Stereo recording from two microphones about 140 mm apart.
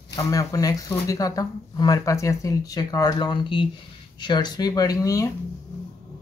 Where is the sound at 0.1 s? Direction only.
25° left (ahead or behind).